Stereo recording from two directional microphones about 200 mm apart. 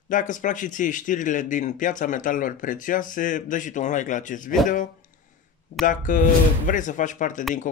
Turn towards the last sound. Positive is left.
turn(degrees=40)  # may be behind; listen again after turning